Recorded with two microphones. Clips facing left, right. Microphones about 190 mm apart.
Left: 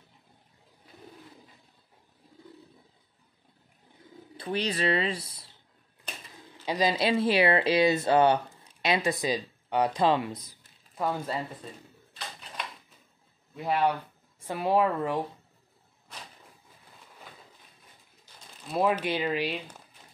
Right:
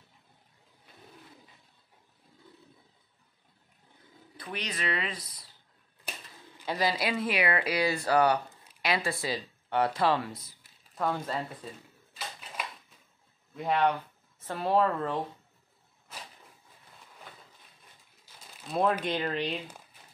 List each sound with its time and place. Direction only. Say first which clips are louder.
4.4 s speech: left 7 dB; 30° left (ahead or behind)
6.1 s typewriter: even; 10° right (ahead or behind)
6.6 s speech: left 3 dB; 15° left (ahead or behind)
11.0 s a woman's voice: left 1 dB; 5° left (ahead or behind)
12.2 s a sound: even; 5° right (ahead or behind)
13.6 s a woman's voice: even; 5° left (ahead or behind)
18.7 s a woman's voice: left 1 dB; 5° left (ahead or behind)